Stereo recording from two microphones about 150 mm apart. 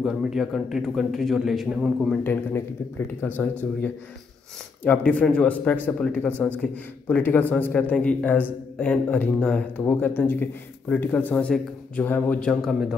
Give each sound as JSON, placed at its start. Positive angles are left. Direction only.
{"t": 0.0, "sound": "a man's voice", "side_deg": -5}
{"t": 2.2, "sound": "a man's voice", "side_deg": 15}
{"t": 4.8, "sound": "a man's voice", "side_deg": 10}